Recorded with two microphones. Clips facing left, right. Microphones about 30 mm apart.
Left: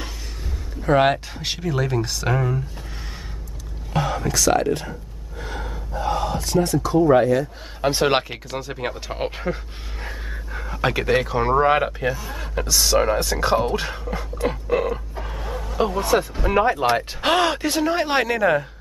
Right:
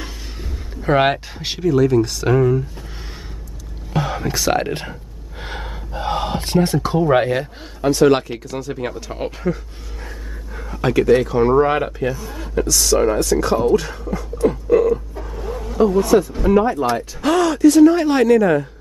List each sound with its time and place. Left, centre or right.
0.8 s speech: centre
1.6 s speech: centre
3.9 s a sound: centre
4.3 s speech: centre
5.4 s gasp: right
6.0 s speech: right
7.8 s speech: left
14.1 s a sound: left
15.5 s vehicle: centre
16.0 s speech: left